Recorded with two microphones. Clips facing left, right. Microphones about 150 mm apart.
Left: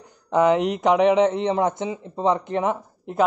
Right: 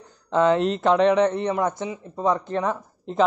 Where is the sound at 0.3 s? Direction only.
15° left (ahead or behind).